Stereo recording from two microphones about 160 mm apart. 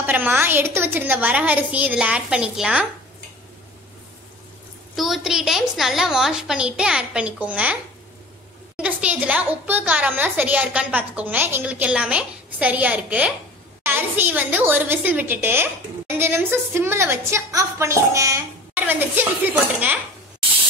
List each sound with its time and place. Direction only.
0.0 s a woman's voice: 10° right (ahead or behind)
4.9 s a woman's voice: centre (ahead or behind)